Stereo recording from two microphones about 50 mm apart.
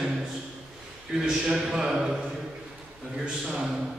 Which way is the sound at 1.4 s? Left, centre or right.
Centre.